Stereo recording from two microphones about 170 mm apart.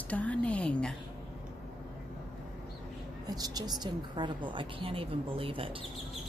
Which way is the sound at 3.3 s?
25° right (ahead or behind).